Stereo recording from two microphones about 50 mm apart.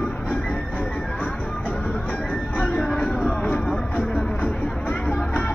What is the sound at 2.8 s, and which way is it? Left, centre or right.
Music, centre.